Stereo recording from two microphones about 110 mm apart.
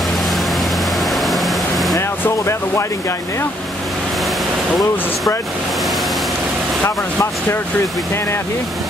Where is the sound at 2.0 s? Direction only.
25° left (ahead or behind).